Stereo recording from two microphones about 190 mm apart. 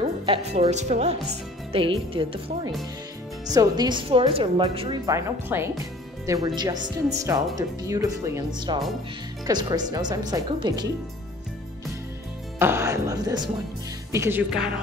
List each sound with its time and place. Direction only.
0.0 s a woman's voice: 30° right (ahead or behind)
5.0 s a woman's voice: 15° right (ahead or behind)
12.5 s speech: 10° right (ahead or behind)